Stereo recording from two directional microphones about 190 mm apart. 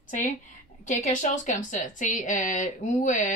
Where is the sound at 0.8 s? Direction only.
40° left (ahead or behind).